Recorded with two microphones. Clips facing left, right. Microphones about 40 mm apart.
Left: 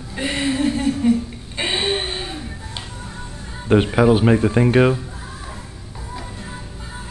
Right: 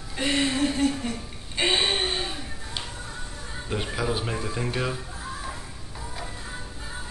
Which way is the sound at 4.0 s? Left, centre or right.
Left.